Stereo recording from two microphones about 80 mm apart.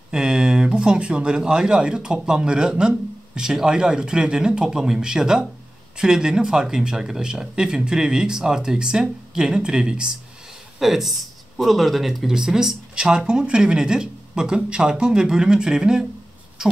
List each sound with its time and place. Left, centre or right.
0.1 s speech: centre